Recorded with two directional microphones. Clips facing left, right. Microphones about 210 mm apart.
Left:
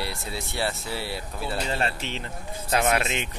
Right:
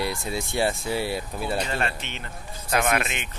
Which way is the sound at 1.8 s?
35° left (ahead or behind).